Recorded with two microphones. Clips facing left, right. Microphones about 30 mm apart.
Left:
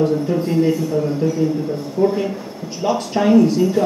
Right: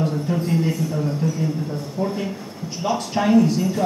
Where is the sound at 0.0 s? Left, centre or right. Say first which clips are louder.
Left 5 dB; centre.